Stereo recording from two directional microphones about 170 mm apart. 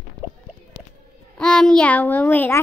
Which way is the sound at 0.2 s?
15° right (ahead or behind).